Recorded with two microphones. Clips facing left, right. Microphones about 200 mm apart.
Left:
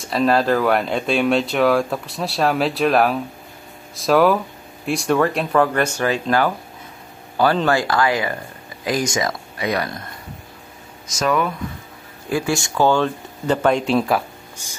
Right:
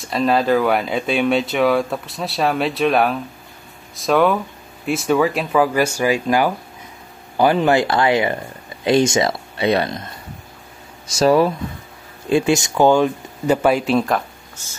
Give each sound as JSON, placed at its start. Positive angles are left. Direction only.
{"t": 0.0, "sound": "speech", "side_deg": 0}
{"t": 11.1, "sound": "speech", "side_deg": -30}